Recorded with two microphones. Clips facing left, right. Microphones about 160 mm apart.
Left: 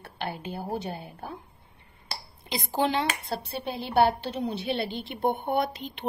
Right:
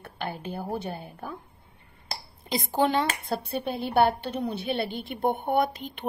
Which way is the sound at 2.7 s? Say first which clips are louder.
Right 2 dB; 45° right (ahead or behind).